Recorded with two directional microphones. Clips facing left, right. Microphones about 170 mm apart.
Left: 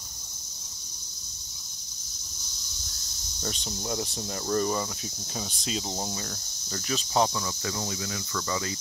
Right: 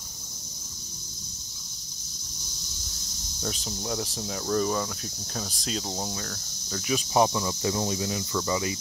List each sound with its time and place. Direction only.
3.4 s cricket: centre (ahead or behind)
6.9 s speech: 15° right (ahead or behind)